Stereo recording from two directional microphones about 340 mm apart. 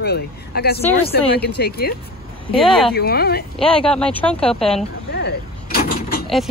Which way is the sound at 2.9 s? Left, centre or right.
Left.